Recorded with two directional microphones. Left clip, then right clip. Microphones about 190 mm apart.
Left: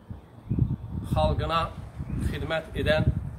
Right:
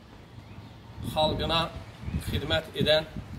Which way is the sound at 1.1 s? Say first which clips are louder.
Even; centre (ahead or behind).